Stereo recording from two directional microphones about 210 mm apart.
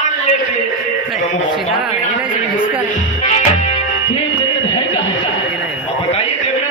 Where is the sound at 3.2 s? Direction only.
35° left (ahead or behind).